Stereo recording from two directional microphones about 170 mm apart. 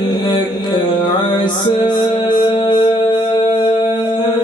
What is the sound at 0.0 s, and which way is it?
Music, 25° left (ahead or behind).